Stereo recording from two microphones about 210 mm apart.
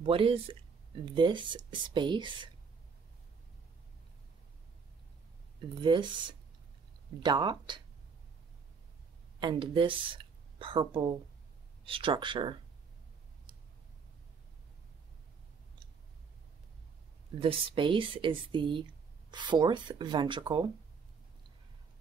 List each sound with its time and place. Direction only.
0.0 s speech: 25° right (ahead or behind)
5.8 s speech: 25° right (ahead or behind)
9.4 s speech: 25° right (ahead or behind)
17.4 s speech: 25° right (ahead or behind)